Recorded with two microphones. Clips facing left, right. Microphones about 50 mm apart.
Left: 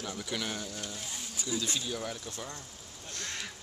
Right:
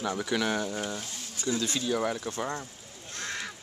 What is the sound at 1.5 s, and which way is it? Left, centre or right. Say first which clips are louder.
Speech: right 5 dB; right.